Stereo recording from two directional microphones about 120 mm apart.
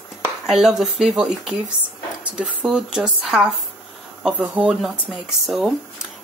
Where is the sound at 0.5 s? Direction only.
5° right (ahead or behind).